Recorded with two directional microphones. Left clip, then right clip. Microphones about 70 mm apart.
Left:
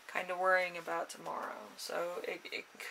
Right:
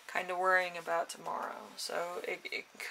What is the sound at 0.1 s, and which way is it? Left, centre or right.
Speech, right.